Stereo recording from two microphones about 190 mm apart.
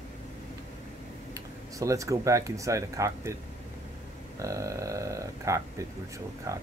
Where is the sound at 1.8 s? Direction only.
15° right (ahead or behind).